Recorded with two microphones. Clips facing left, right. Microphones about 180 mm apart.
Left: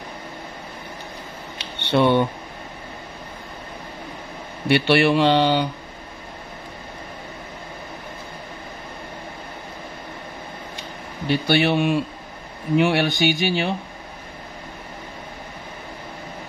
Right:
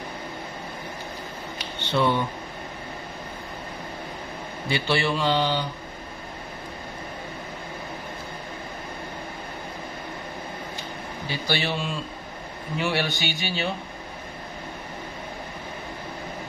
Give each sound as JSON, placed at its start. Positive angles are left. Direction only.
{"t": 1.8, "sound": "speech", "side_deg": 70}
{"t": 4.6, "sound": "speech", "side_deg": 65}
{"t": 11.2, "sound": "speech", "side_deg": 60}